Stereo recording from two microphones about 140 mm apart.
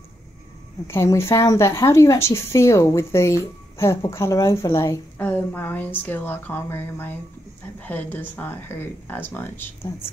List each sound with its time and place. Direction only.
0.8 s a woman's voice: 20° left (ahead or behind)